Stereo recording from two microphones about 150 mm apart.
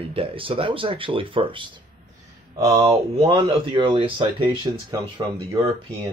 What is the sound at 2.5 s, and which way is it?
Speech, 20° right (ahead or behind).